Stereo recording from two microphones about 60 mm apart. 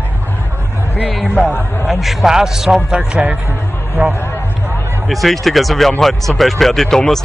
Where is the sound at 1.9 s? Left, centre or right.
Centre; by 4.1 s right.